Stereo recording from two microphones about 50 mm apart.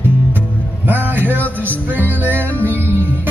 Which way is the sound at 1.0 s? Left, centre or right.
Right.